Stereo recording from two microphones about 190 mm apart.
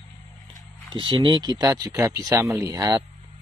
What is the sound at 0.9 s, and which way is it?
Speech, 25° right (ahead or behind).